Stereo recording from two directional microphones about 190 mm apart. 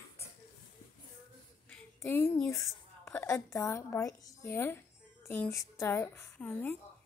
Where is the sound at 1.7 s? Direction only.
10° left (ahead or behind).